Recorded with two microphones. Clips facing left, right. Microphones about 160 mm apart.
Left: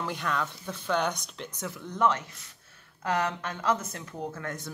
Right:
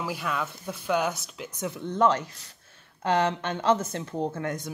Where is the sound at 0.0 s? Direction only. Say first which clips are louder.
Right 1 dB; 5° right (ahead or behind).